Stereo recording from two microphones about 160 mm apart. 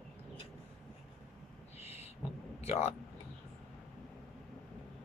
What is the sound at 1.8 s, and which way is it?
Owl, 40° left (ahead or behind).